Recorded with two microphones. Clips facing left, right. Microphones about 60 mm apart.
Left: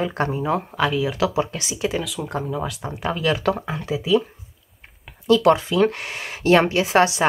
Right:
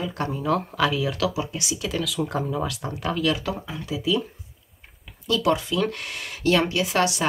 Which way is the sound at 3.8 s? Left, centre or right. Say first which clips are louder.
Left 5 dB; left.